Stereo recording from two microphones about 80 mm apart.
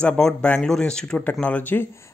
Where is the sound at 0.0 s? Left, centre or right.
Centre.